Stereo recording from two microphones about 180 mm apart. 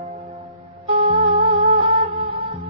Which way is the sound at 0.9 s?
35° right (ahead or behind).